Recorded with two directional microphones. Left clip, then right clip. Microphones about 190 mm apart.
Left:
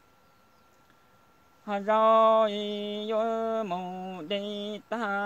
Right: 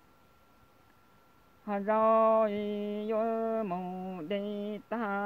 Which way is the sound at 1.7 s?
10° left (ahead or behind).